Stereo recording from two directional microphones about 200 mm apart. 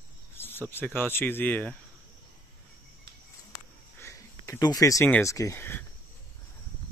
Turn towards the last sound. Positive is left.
turn(degrees=10)  # may be behind; listen again after turning